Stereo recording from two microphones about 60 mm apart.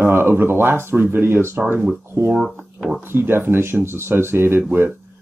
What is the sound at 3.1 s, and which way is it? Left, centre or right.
Speech, right.